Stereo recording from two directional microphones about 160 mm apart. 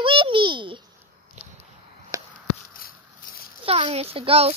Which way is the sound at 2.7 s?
65° left (ahead or behind).